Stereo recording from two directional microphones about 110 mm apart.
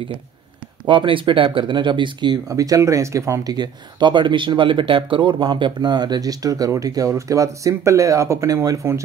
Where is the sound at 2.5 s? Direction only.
30° right (ahead or behind).